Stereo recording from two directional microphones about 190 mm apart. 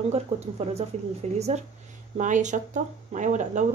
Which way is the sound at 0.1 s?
35° right (ahead or behind).